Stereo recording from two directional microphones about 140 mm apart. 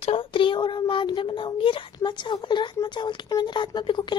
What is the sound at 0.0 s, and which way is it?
A child's voice, 40° left (ahead or behind).